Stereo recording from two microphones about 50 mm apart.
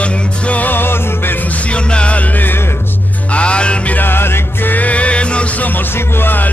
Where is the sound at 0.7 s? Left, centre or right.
Left.